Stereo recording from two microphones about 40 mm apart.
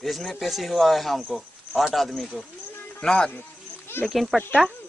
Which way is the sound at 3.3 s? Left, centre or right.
Left.